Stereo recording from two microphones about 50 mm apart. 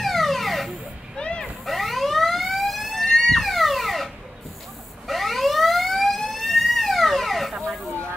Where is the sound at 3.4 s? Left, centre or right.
Centre.